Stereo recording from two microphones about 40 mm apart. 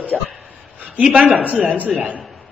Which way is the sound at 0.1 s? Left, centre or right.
Left.